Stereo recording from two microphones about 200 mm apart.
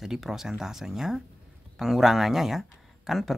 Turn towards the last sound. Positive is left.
turn(degrees=0)  # may be behind; listen again after turning